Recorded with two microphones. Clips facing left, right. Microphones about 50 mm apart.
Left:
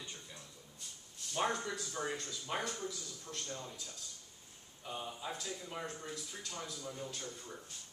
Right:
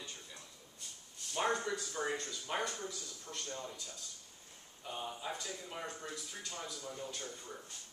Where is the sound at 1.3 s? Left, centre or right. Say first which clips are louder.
Right 1 dB; centre.